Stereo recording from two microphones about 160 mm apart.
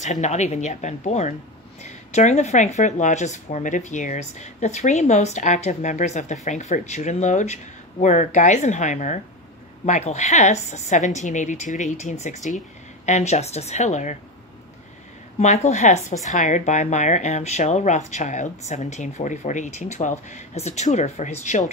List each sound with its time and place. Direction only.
0.0 s speech: 45° left (ahead or behind)
15.3 s speech: 45° left (ahead or behind)